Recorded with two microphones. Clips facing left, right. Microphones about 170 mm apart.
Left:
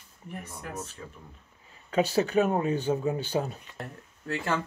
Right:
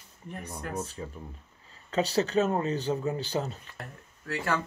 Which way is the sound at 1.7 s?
15° left (ahead or behind).